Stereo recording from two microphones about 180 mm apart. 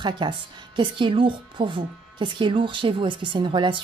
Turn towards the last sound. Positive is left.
turn(degrees=-25)  # may be behind; listen again after turning